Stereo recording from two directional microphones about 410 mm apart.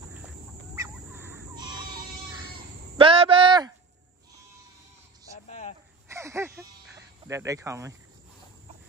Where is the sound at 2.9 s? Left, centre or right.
Centre.